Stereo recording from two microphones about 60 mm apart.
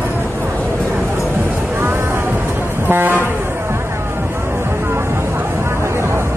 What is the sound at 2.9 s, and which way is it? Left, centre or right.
Vehicle, right.